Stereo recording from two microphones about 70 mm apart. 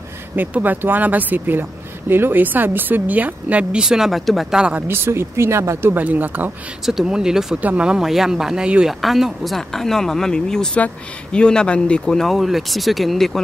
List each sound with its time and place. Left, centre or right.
0.4 s speech: right
3.8 s speech: centre
4.6 s speech: centre
4.8 s speech: right
6.0 s speech: right
6.9 s speech: centre
9.0 s speech: centre